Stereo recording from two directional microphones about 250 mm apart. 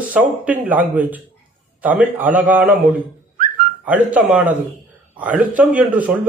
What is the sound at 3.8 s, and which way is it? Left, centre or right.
A man's voice, centre.